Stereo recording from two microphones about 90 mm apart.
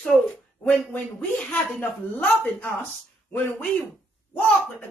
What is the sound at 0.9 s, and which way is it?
Speech, 15° left (ahead or behind).